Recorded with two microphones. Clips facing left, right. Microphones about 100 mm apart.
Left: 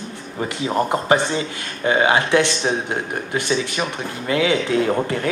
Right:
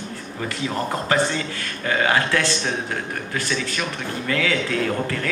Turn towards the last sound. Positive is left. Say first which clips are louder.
# left 4 dB
turn(degrees=25)  # may be behind; listen again after turning